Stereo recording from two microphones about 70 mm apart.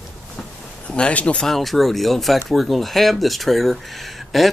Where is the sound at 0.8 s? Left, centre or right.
Centre.